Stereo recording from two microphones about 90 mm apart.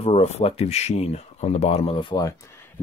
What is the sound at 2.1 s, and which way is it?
Speech, 35° left (ahead or behind).